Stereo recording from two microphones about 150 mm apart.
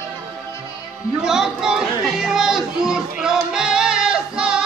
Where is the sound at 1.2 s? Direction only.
5° right (ahead or behind).